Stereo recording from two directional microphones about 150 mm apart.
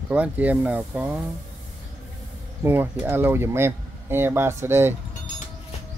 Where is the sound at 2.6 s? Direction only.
15° right (ahead or behind).